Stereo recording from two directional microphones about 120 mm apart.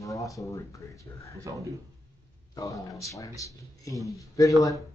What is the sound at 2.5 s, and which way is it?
Speech, 25° left (ahead or behind).